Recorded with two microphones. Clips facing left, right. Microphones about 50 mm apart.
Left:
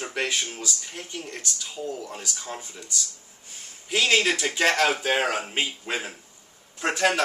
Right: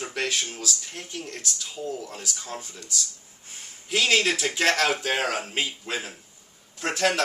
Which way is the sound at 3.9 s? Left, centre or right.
Centre.